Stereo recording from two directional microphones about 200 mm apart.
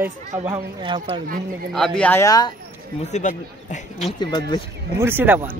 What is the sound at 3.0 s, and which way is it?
Speech, 35° left (ahead or behind).